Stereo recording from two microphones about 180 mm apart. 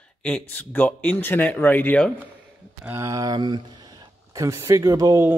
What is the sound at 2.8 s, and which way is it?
Speech, 15° right (ahead or behind).